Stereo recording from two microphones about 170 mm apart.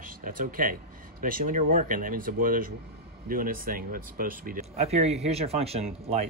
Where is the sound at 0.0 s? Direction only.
55° right (ahead or behind).